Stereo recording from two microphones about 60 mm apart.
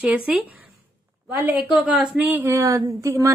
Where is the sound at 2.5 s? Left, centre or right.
Right.